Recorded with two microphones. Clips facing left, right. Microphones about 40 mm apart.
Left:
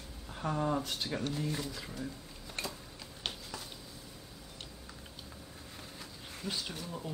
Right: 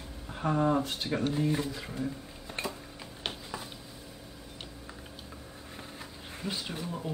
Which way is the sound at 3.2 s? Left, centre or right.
Centre.